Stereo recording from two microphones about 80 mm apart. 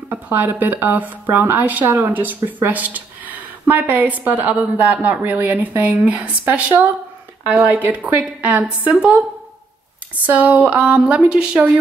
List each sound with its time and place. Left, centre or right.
0.1 s speech: right
10.2 s speech: centre